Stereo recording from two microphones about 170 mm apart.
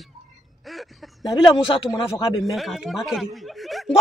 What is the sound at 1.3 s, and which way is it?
Speech, 25° left (ahead or behind).